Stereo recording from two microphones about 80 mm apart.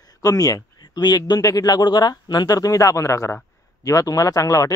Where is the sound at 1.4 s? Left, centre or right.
Left.